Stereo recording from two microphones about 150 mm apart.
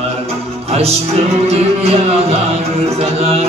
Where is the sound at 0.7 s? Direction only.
45° right (ahead or behind).